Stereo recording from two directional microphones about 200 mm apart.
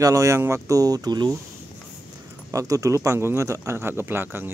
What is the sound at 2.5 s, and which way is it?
Speech, 15° right (ahead or behind).